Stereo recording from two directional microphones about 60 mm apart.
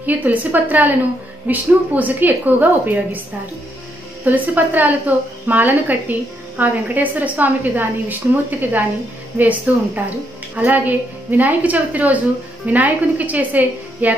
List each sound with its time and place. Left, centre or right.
0.0 s a woman's voice: right
4.2 s a woman's voice: right